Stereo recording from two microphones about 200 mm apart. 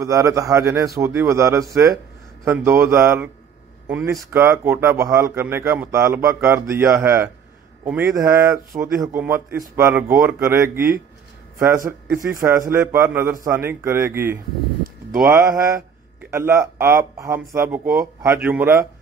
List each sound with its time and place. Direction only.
0.0 s speech: 15° right (ahead or behind)